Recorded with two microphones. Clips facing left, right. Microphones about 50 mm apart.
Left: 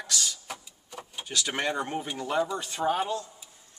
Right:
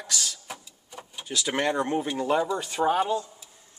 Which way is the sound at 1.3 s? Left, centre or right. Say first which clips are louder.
Right 3 dB; centre.